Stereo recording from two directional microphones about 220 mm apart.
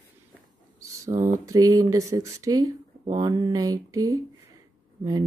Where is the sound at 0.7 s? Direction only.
15° right (ahead or behind).